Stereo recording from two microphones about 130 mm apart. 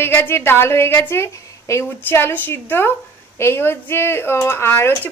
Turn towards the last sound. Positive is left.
turn(degrees=15)  # may be behind; listen again after turning